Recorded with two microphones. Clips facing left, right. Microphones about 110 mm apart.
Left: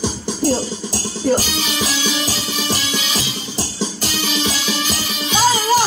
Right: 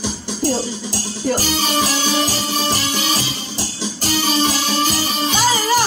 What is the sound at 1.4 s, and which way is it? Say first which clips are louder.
Music: right 3 dB; 40° right (ahead or behind).